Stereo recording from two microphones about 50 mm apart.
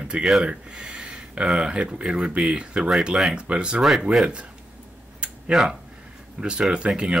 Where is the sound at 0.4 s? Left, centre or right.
Centre.